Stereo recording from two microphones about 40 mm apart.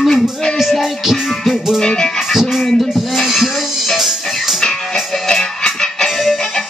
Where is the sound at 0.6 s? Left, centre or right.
Centre.